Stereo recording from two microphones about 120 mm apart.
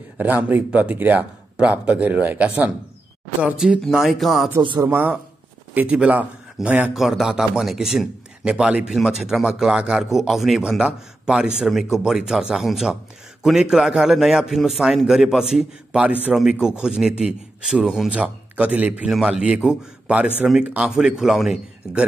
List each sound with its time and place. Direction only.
0.2 s a man's voice: 15° right (ahead or behind)
4.6 s speech: 35° right (ahead or behind)
4.8 s a man's voice: 15° right (ahead or behind)